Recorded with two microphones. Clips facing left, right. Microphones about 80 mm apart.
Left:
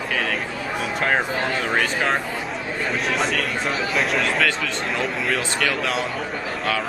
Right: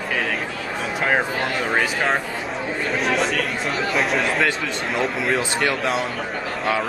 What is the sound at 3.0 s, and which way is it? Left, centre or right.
Speech, centre.